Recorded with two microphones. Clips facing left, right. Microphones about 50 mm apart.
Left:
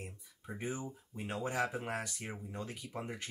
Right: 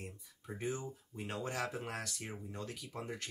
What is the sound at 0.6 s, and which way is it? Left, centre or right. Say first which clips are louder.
Speech: right 1 dB; centre.